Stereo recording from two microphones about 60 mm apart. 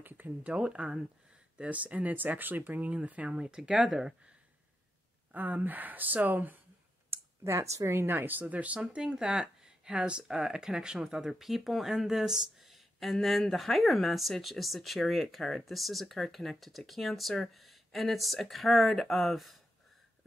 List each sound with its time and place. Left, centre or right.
0.0 s speech: right
0.5 s speech: centre
5.3 s speech: right
7.1 s speech: right
8.8 s speech: centre